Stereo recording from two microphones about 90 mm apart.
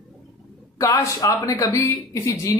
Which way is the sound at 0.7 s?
40° left (ahead or behind).